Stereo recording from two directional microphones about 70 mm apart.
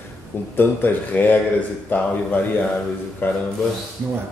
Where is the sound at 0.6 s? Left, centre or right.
Left.